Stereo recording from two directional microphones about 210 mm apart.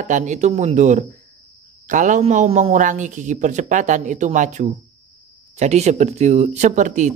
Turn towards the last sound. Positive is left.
turn(degrees=-35)  # may be behind; listen again after turning